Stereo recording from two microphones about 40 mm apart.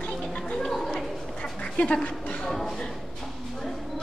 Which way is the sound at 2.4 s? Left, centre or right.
Centre.